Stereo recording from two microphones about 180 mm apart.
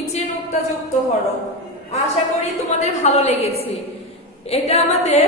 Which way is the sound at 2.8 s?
40° left (ahead or behind).